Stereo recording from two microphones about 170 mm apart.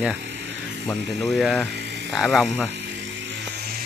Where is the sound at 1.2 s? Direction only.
Centre (ahead or behind).